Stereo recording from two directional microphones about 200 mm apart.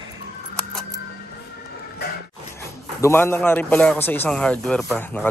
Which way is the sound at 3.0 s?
10° left (ahead or behind).